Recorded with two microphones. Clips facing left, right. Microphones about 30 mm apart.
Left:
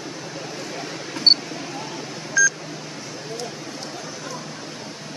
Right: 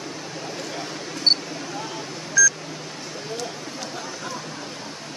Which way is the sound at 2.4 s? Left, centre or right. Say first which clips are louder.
Even; left.